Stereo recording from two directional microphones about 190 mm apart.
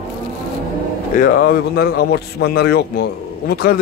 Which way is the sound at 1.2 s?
55° left (ahead or behind).